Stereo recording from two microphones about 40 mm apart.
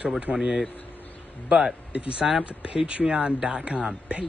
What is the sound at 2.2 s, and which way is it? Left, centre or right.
Speech, right.